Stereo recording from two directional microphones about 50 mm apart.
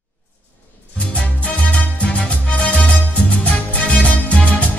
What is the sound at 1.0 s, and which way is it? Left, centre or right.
Music, left.